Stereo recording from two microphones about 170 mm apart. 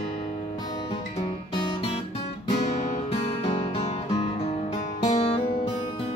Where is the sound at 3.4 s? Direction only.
40° left (ahead or behind).